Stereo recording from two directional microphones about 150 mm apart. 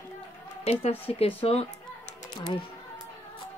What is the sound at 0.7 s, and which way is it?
Speech, 40° left (ahead or behind).